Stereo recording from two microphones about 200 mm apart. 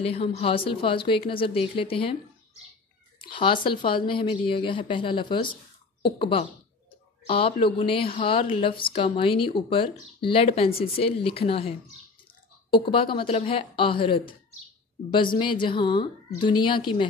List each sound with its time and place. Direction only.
0.0 s speech: 30° left (ahead or behind)
3.2 s speech: 25° left (ahead or behind)
12.7 s speech: 25° left (ahead or behind)